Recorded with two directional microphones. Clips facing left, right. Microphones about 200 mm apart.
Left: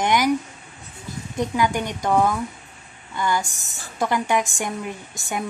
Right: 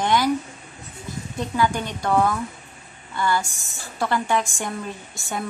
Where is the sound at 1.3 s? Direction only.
15° left (ahead or behind).